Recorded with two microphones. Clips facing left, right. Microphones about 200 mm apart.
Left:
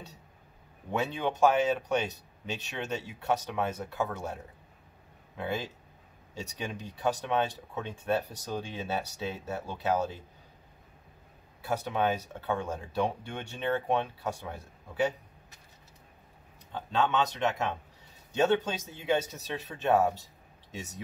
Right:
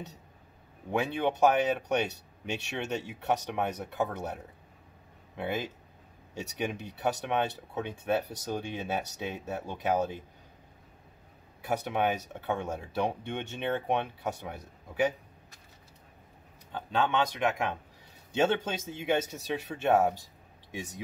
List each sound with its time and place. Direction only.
0.9 s speech: 15° right (ahead or behind)
2.5 s speech: 15° right (ahead or behind)
5.4 s speech: 15° right (ahead or behind)
11.6 s speech: 15° right (ahead or behind)
16.7 s speech: 10° right (ahead or behind)